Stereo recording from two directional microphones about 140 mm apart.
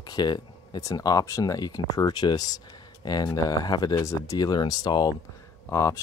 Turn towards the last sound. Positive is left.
turn(degrees=20)  # may be behind; listen again after turning